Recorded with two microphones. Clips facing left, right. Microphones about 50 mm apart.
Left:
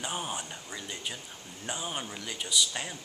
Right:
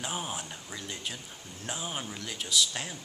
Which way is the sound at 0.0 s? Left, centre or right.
Centre.